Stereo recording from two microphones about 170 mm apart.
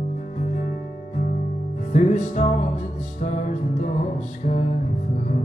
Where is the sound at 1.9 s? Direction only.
45° left (ahead or behind).